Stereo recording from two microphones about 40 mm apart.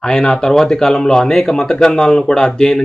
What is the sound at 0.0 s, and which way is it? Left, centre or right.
Speech, centre.